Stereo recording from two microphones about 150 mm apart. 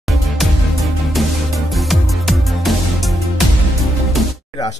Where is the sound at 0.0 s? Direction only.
Centre (ahead or behind).